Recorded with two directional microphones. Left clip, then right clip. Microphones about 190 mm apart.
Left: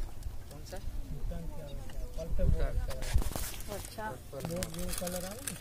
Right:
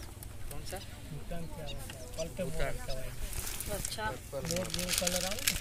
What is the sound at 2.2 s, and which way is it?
Speech, 25° left (ahead or behind).